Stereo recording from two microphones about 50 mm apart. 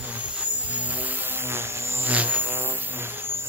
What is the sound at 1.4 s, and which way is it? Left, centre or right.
Buzz, right.